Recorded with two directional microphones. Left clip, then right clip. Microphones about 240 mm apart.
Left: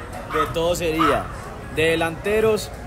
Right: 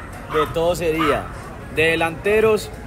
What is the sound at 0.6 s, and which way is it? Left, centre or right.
Speech, centre.